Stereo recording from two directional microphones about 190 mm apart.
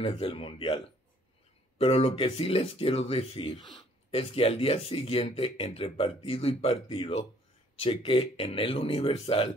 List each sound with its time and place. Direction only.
0.0 s speech: 30° left (ahead or behind)
1.8 s speech: 30° left (ahead or behind)